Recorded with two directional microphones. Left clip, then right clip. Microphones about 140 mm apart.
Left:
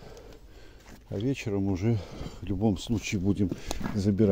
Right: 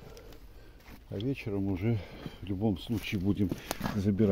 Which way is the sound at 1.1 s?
50° left (ahead or behind).